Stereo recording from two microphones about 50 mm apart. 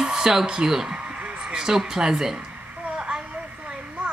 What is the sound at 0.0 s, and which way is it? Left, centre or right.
Speech, centre.